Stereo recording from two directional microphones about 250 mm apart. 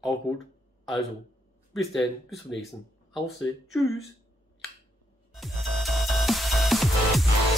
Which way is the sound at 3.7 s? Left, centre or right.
Centre.